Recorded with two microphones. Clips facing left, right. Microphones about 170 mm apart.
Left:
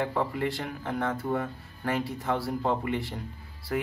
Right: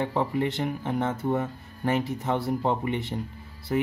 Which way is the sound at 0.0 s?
20° right (ahead or behind).